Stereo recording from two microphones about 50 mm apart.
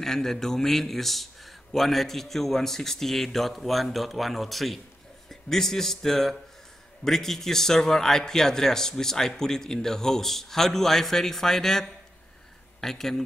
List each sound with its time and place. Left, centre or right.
0.0 s a man's voice: centre